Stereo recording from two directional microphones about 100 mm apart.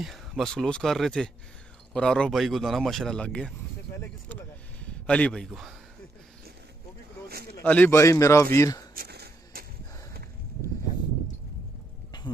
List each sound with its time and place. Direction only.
0.0 s speech: centre (ahead or behind)
3.9 s a sound: 15° left (ahead or behind)
5.5 s speech: 5° right (ahead or behind)
7.6 s a man's voice: 15° left (ahead or behind)
7.9 s a man's voice: 30° left (ahead or behind)